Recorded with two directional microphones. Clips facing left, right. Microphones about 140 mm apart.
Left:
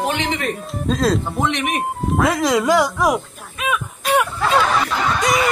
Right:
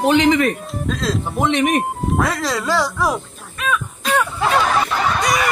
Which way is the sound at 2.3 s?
20° left (ahead or behind).